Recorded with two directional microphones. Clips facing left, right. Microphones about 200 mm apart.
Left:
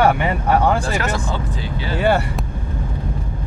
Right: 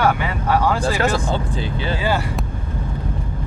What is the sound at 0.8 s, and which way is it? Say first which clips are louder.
Speech: right 3 dB; 30° right (ahead or behind).